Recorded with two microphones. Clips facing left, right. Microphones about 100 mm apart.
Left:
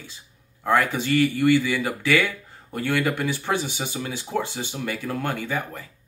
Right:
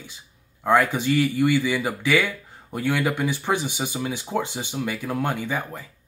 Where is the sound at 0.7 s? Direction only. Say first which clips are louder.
Right 2 dB; 15° right (ahead or behind).